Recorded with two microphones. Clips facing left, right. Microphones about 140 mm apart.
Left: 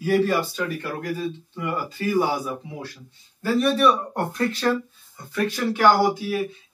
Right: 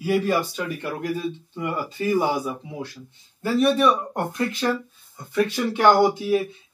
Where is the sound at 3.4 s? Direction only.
20° right (ahead or behind).